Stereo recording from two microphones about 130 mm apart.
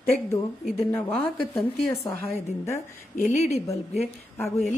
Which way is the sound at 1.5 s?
20° left (ahead or behind).